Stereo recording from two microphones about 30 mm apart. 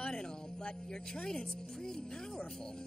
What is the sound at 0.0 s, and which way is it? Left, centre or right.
Speech, left.